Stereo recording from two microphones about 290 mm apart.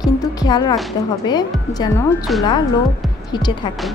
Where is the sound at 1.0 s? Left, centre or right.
Centre.